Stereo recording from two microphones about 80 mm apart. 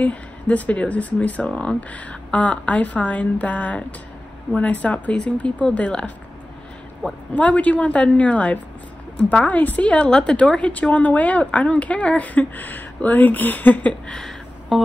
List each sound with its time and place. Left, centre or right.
0.0 s a woman's voice: centre